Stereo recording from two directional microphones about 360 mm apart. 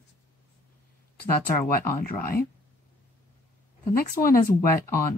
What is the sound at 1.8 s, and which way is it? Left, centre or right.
Speech, left.